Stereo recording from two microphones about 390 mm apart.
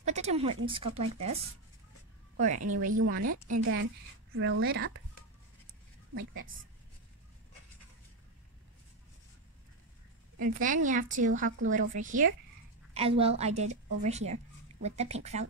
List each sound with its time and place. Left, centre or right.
0.0 s a sound: centre
0.7 s a woman's voice: centre
2.3 s speech: centre
6.1 s speech: right
10.4 s a woman's voice: centre
14.0 s a sound: centre
15.0 s a woman's voice: centre